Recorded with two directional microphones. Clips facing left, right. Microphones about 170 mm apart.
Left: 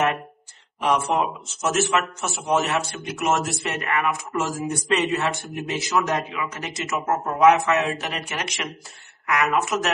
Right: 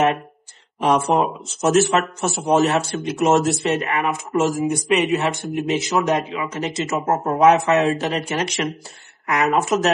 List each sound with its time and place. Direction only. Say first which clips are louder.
0.7 s speech: right 4 dB; 40° right (ahead or behind)